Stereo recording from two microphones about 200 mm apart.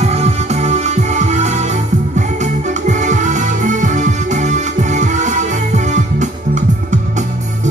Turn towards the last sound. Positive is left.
turn(degrees=-35)  # may be behind; listen again after turning